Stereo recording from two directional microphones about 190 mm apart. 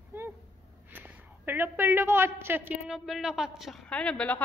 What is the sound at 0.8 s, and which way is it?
A woman's voice, 10° right (ahead or behind).